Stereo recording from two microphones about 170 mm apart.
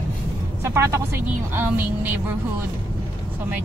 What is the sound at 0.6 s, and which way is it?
Speech, 15° right (ahead or behind).